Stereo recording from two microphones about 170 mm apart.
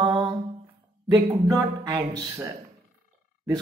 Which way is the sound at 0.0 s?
25° right (ahead or behind).